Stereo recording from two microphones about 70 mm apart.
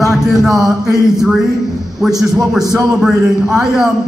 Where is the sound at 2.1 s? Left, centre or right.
Right.